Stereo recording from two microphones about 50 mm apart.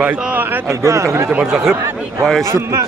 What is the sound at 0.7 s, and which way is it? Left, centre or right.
Speech, right.